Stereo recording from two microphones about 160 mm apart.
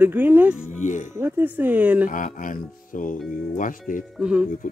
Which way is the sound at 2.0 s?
55° left (ahead or behind).